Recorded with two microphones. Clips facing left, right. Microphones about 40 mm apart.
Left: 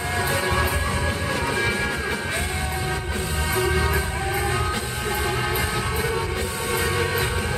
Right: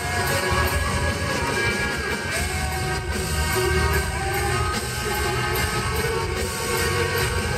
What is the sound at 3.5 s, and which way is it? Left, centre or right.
Music, left.